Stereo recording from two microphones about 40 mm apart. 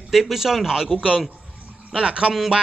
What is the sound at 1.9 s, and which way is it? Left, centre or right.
Speech, right.